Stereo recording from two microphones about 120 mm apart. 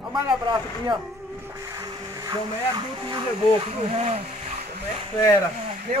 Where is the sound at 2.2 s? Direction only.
40° right (ahead or behind).